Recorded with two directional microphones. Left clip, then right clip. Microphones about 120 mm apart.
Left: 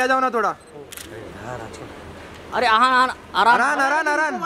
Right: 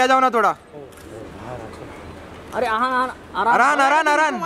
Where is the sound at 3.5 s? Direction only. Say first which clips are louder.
Right 2 dB; 10° right (ahead or behind).